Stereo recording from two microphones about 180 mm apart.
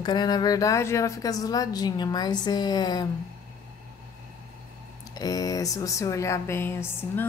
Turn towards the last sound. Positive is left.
turn(degrees=10)  # may be behind; listen again after turning